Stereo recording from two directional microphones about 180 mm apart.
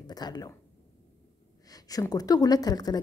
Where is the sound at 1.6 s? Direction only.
20° left (ahead or behind).